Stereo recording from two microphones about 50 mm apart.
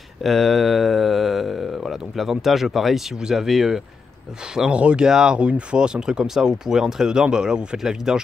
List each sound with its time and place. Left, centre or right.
0.2 s speech: centre
4.6 s speech: right